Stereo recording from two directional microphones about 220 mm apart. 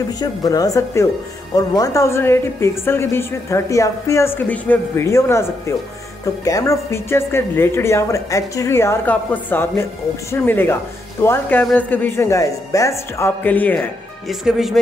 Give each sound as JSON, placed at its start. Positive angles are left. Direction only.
{"t": 0.2, "sound": "a woman's voice", "side_deg": 15}